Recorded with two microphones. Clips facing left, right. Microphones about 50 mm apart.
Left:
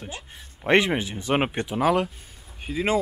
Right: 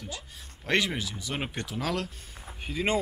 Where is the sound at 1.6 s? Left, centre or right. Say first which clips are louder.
Left 9 dB; left.